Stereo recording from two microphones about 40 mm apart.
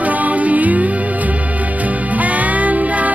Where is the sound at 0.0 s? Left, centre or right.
Right.